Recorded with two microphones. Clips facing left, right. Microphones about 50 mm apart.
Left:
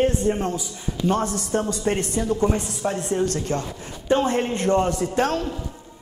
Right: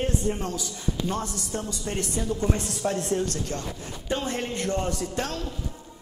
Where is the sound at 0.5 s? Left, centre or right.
Centre.